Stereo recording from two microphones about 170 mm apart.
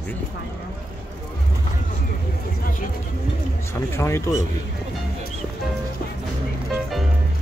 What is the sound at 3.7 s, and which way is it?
Speech, 15° left (ahead or behind).